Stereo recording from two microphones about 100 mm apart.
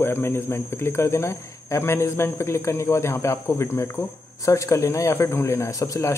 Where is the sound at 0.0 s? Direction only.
25° left (ahead or behind).